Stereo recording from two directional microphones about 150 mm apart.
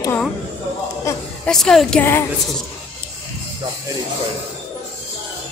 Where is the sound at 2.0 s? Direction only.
15° left (ahead or behind).